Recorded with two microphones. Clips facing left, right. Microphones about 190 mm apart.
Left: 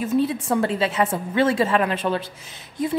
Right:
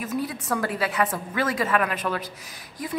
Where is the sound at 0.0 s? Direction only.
25° left (ahead or behind).